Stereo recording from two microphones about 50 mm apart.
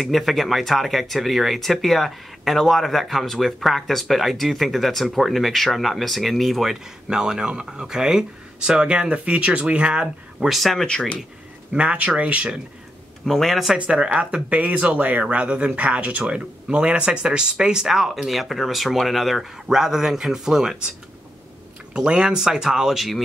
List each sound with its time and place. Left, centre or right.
0.0 s speech: centre
7.1 s speech: centre
10.5 s speech: centre
10.9 s speech: centre
11.7 s speech: right
13.2 s speech: centre
13.7 s speech: right
21.9 s speech: centre